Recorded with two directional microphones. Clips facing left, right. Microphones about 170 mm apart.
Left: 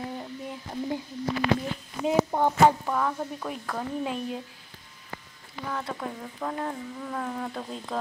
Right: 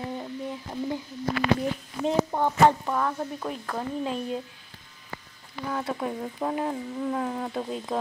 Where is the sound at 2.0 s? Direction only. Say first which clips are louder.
Left 1 dB; 5° left (ahead or behind).